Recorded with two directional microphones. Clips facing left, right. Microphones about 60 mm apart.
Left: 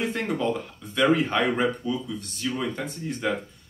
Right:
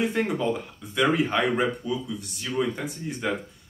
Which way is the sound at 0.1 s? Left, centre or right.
Centre.